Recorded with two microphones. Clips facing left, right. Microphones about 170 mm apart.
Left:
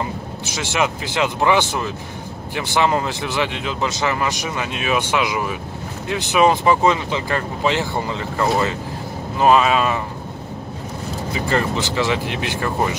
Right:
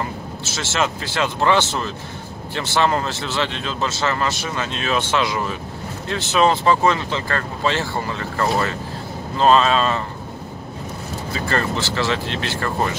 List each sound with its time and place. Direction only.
0.5 s speech: 15° left (ahead or behind)
11.3 s speech: 15° left (ahead or behind)